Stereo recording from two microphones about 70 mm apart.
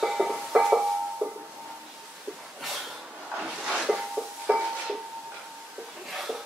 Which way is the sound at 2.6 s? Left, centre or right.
Centre.